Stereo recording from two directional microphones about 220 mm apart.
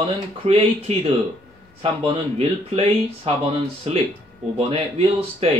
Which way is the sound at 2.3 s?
25° right (ahead or behind).